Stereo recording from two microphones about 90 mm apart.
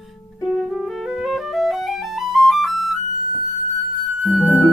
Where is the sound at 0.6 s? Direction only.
5° right (ahead or behind).